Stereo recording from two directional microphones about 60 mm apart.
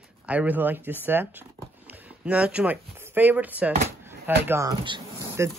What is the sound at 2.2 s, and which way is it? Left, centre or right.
Speech, right.